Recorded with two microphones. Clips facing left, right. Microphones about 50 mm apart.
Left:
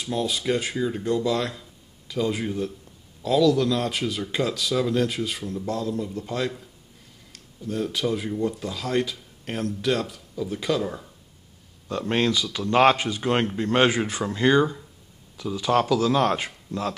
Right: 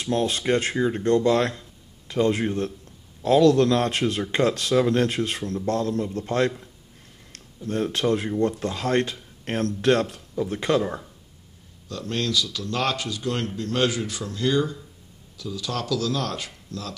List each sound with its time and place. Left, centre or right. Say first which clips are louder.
0.0 s speech: right 2 dB; right
0.7 s speech: right 3 dB; right
1.0 s speech: right 6 dB; right
7.6 s speech: right 2 dB; right
8.4 s speech: right 3 dB; right
9.1 s a sound: right 3 dB; right
9.8 s speech: right 6 dB; right
10.8 s speech: right 2 dB; centre
11.9 s speech: left 3 dB; left